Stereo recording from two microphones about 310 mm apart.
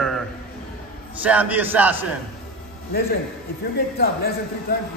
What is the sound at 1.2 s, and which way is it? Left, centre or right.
Speech, centre.